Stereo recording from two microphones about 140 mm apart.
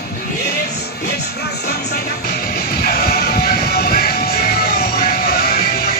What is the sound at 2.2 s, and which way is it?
Music, 90° left.